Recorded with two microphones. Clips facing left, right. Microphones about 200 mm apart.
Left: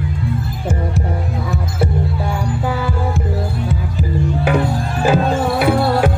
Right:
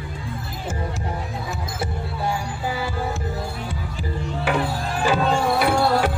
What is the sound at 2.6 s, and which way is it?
Heart sounds, 55° left (ahead or behind).